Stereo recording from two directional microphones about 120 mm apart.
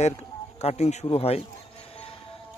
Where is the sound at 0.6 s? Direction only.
65° left (ahead or behind).